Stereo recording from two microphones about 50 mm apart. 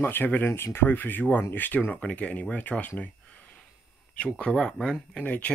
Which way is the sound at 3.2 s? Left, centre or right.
Left.